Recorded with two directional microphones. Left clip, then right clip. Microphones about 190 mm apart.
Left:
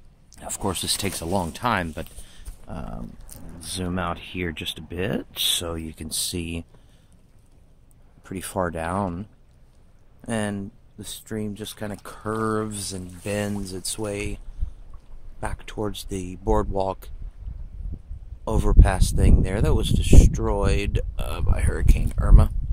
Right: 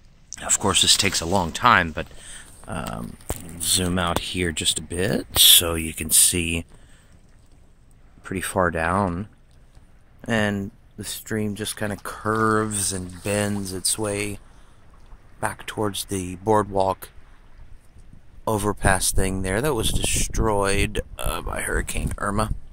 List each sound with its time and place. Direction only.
0.3 s a sound: centre (ahead or behind)
0.7 s speech: centre (ahead or behind)
8.2 s speech: 15° right (ahead or behind)
15.4 s speech: 15° right (ahead or behind)
18.4 s speech: 10° right (ahead or behind)